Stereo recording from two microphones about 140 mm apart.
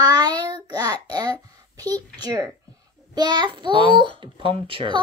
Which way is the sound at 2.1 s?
30° right (ahead or behind).